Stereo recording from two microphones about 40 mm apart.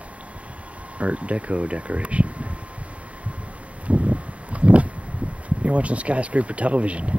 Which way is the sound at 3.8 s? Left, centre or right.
Right.